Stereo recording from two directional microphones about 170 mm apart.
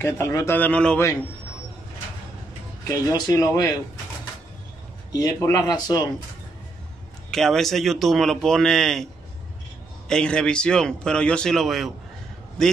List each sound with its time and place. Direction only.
0.0 s a man's voice: 15° left (ahead or behind)
2.9 s speech: 20° left (ahead or behind)
5.1 s speech: 25° left (ahead or behind)
7.2 s a man's voice: centre (ahead or behind)
10.0 s a man's voice: 5° left (ahead or behind)